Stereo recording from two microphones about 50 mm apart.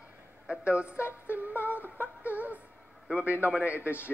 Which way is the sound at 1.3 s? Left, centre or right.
Right.